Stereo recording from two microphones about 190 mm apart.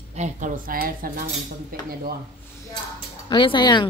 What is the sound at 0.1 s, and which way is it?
Speech, 40° right (ahead or behind).